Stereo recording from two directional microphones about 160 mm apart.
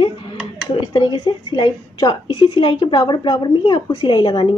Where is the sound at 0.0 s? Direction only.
30° left (ahead or behind).